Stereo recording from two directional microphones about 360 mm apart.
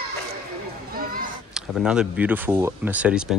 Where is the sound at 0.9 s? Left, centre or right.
Right.